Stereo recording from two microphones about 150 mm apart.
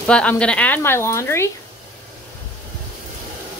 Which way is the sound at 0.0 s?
10° left (ahead or behind).